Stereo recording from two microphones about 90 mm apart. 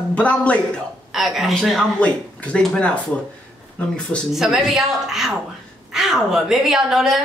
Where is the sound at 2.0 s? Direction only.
15° left (ahead or behind).